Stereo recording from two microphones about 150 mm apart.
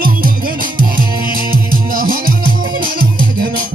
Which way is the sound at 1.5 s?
75° right (ahead or behind).